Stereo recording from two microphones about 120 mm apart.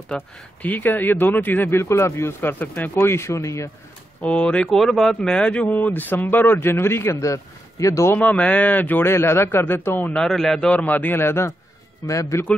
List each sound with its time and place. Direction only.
0.1 s speech: 10° left (ahead or behind)
4.2 s speech: 10° left (ahead or behind); by 8.2 s 25° left (ahead or behind)
8.2 s speech: 10° left (ahead or behind)
10.2 s a man's voice: 5° left (ahead or behind)
10.8 s speech: 15° left (ahead or behind)